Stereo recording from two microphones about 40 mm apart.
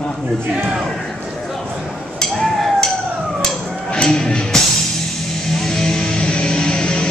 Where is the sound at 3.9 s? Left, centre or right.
Centre.